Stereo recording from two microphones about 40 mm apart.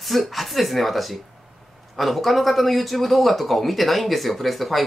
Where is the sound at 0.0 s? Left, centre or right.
Centre.